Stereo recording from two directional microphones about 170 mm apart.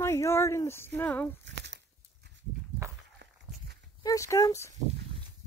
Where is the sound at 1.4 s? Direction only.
90° right.